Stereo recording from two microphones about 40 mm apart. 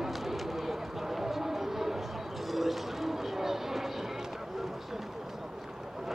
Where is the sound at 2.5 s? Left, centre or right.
Centre.